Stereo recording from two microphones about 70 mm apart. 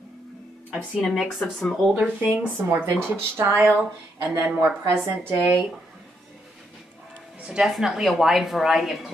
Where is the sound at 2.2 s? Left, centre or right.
Right.